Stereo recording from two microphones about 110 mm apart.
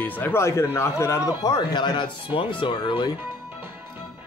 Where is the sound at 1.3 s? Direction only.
35° left (ahead or behind).